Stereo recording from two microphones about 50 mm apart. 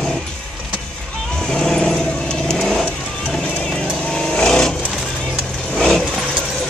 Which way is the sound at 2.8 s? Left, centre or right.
Centre.